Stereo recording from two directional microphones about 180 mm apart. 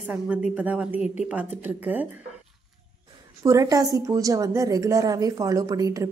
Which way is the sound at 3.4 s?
20° right (ahead or behind).